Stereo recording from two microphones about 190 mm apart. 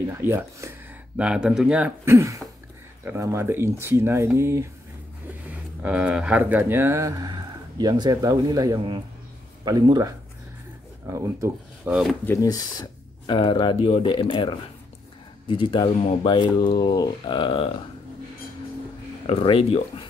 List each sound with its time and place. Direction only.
0.1 s speech: 10° right (ahead or behind)
12.3 s speech: 15° left (ahead or behind)
19.2 s speech: 30° left (ahead or behind)